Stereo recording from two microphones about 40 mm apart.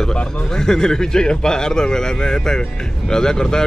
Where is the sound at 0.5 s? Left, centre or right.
Centre.